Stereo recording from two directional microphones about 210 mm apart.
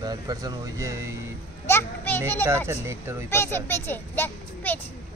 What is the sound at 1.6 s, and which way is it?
Speech, 10° left (ahead or behind).